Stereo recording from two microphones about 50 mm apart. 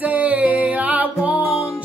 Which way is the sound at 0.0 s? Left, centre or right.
Right.